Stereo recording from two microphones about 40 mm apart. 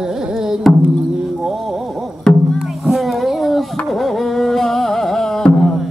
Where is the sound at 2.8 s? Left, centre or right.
Centre.